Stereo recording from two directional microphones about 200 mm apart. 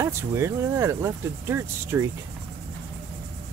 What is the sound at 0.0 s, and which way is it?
Speech, 15° right (ahead or behind).